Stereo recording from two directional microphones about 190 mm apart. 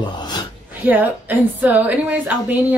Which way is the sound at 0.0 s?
20° left (ahead or behind).